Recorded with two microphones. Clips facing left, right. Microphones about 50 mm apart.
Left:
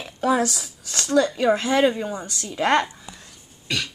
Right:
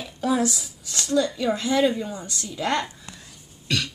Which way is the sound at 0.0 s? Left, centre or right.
Left.